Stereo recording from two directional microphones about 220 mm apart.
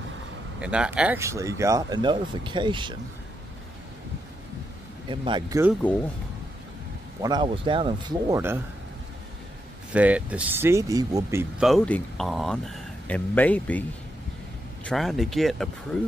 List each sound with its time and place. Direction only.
0.6 s speech: 5° right (ahead or behind); by 3.0 s 20° right (ahead or behind)
5.0 s a man's voice: 20° right (ahead or behind)
5.8 s speech: 5° left (ahead or behind)
7.2 s a man's voice: 20° right (ahead or behind)
9.9 s speech: 5° right (ahead or behind)
11.6 s speech: 5° left (ahead or behind)
14.9 s speech: centre (ahead or behind)